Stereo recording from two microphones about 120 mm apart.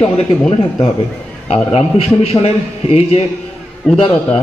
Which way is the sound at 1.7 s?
60° left (ahead or behind).